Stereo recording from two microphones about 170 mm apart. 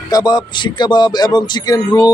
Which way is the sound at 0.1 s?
25° left (ahead or behind).